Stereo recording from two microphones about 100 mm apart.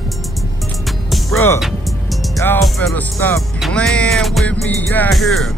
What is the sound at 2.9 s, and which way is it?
Speech, 20° left (ahead or behind).